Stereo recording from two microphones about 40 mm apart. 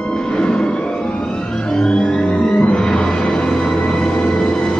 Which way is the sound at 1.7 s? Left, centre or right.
Centre.